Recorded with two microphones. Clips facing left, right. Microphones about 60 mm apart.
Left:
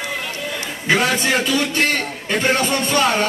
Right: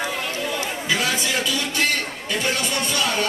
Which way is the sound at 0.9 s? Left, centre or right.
Left.